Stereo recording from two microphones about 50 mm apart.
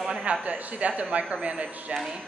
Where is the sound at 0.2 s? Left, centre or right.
Right.